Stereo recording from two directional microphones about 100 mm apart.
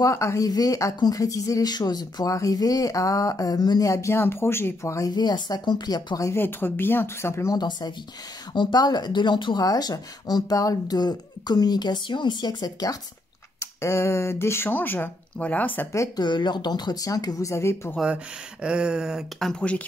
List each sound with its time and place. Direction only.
0.0 s speech: 30° left (ahead or behind)
6.3 s speech: 20° left (ahead or behind)
7.5 s speech: 45° left (ahead or behind)
13.6 s speech: 30° left (ahead or behind)
16.2 s speech: 50° left (ahead or behind); by 17.9 s 25° left (ahead or behind)
18.0 s speech: 10° right (ahead or behind)
19.5 s speech: 10° left (ahead or behind)